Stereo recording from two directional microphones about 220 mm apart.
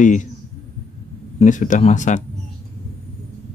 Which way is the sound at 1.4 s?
35° left (ahead or behind).